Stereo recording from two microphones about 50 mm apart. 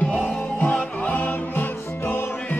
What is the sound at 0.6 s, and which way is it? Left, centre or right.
Music, left.